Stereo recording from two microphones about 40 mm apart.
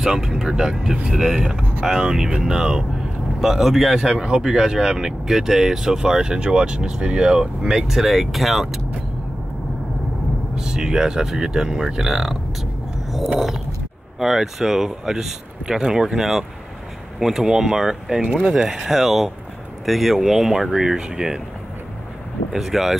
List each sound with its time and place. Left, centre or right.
0.0 s speech: centre
3.9 s speech: centre
10.5 s speech: centre
14.2 s speech: centre
22.5 s speech: centre